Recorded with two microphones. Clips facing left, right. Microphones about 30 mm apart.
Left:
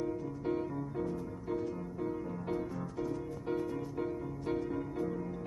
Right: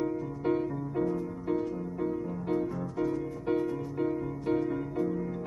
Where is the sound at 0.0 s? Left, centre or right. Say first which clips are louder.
Right 5 dB; right.